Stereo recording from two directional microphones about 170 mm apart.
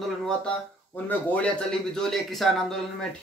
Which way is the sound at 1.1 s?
5° left (ahead or behind).